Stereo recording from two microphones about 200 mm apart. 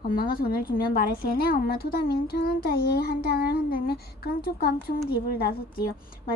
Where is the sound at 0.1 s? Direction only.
45° left (ahead or behind).